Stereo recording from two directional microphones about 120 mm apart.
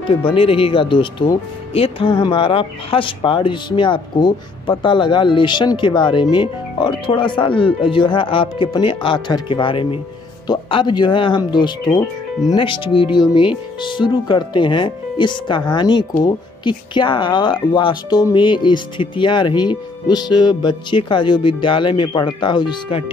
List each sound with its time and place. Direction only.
0.1 s speech: 45° left (ahead or behind)